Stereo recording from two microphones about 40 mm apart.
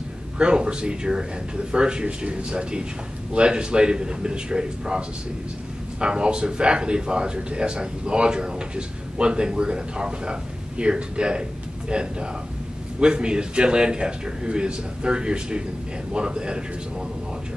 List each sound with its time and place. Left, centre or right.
0.4 s speech: right